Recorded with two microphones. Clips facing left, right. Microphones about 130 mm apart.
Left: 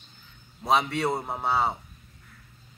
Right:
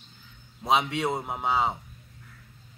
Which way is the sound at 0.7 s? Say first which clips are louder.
Left 1 dB; 15° right (ahead or behind).